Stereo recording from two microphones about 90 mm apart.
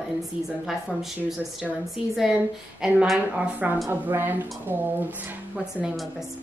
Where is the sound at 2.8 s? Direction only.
10° right (ahead or behind).